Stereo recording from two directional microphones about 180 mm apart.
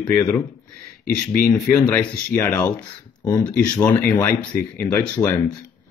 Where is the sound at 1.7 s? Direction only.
10° left (ahead or behind).